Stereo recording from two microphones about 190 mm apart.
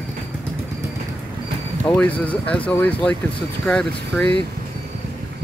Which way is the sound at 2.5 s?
5° left (ahead or behind).